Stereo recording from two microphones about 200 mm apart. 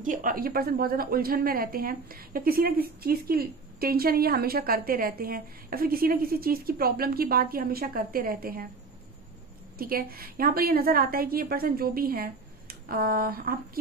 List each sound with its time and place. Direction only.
0.0 s a woman's voice: 40° right (ahead or behind)
9.8 s a woman's voice: 45° right (ahead or behind)